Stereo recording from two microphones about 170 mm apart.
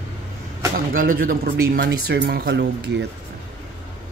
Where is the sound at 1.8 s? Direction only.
80° right.